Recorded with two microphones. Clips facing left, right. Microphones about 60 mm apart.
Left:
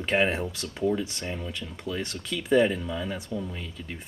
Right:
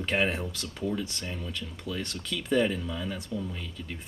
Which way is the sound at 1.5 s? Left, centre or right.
Centre.